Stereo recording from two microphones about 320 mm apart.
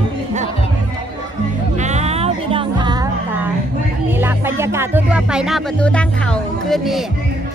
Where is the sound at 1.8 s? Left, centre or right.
Right.